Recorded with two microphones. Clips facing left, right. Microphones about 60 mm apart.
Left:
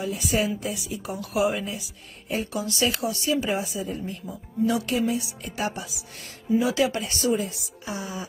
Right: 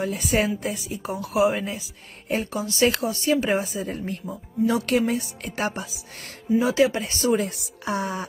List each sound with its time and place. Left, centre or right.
0.0 s a woman's voice: right
4.8 s a woman's voice: right
7.3 s speech: right